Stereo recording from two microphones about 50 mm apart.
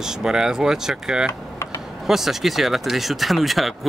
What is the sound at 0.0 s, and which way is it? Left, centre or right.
Speech, centre.